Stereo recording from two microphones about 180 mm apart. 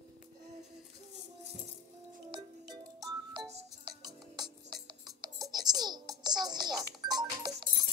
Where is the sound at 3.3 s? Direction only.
30° right (ahead or behind).